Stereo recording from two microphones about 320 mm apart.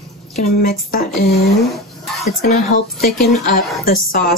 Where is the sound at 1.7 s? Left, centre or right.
Centre.